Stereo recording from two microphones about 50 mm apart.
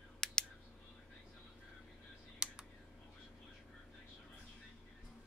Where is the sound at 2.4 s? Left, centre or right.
Centre.